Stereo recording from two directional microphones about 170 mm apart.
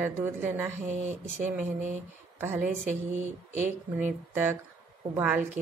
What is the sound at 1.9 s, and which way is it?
Speech, 10° right (ahead or behind).